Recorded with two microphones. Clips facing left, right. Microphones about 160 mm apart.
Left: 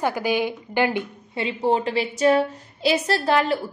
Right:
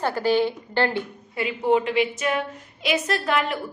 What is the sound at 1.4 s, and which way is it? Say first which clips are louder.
A woman's voice: right 1 dB; 30° left (ahead or behind).